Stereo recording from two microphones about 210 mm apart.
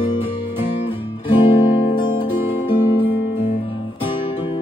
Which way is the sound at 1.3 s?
20° left (ahead or behind).